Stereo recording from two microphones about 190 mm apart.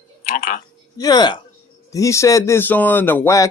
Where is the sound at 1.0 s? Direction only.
20° left (ahead or behind).